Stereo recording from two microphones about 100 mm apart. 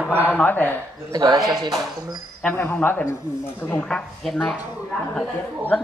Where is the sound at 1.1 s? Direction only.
45° right (ahead or behind).